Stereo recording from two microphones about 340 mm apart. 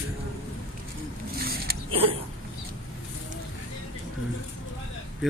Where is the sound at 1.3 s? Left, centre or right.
Right.